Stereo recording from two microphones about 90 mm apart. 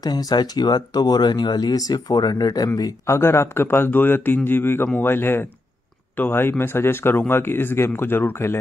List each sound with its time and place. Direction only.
0.0 s speech: 45° left (ahead or behind)
3.2 s speech: 25° left (ahead or behind)